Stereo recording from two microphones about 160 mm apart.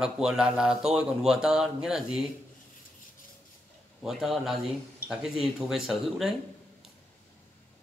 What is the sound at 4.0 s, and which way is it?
Speech, centre (ahead or behind).